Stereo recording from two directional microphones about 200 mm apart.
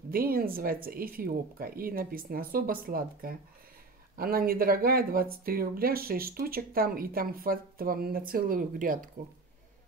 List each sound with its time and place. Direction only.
0.1 s speech: 45° right (ahead or behind)